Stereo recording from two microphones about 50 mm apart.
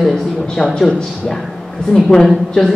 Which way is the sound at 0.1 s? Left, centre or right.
Centre.